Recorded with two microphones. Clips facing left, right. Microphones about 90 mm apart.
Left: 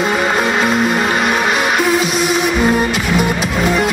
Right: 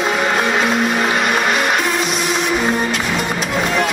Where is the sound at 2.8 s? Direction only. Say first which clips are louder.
Left 4 dB; 5° left (ahead or behind).